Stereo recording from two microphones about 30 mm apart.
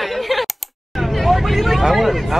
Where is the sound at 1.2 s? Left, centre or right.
Centre.